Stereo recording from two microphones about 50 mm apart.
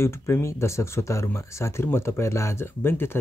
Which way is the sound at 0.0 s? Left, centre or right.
Left.